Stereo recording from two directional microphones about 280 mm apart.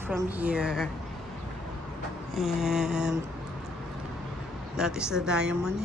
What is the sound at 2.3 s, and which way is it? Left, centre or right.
Speech, centre.